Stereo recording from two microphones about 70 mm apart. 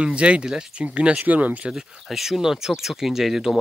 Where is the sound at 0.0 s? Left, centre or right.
Centre.